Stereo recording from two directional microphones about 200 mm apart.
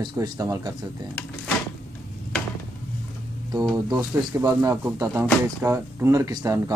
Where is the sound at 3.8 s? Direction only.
15° right (ahead or behind).